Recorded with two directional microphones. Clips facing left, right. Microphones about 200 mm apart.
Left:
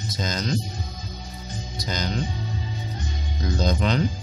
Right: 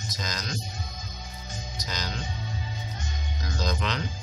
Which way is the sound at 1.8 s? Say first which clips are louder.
Left 7 dB; 30° left (ahead or behind).